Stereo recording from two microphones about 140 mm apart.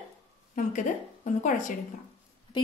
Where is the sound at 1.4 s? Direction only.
65° left (ahead or behind).